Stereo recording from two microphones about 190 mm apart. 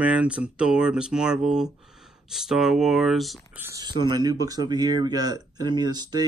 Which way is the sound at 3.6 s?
20° right (ahead or behind).